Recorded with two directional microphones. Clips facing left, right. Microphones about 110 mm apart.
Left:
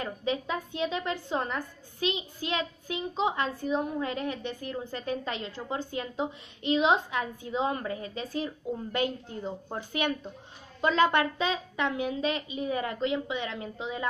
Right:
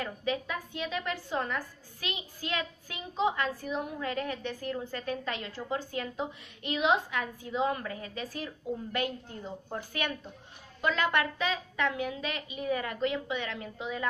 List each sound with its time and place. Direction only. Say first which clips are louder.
0.0 s a woman's voice: left 2 dB; 25° left (ahead or behind)